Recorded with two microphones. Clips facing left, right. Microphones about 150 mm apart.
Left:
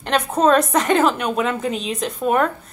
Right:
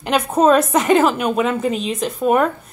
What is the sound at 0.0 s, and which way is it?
A woman's voice, 5° right (ahead or behind).